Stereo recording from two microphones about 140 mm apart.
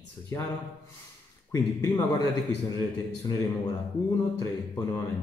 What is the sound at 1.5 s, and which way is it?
Speech, 25° left (ahead or behind).